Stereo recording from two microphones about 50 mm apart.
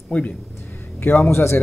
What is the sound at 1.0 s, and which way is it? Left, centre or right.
Speech, left.